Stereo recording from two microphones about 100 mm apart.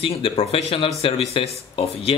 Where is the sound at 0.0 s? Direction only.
70° left (ahead or behind).